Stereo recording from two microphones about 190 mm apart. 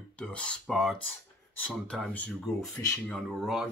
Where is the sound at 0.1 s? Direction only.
5° left (ahead or behind).